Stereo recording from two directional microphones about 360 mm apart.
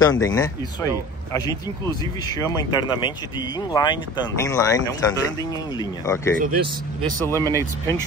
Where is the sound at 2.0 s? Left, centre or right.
Centre.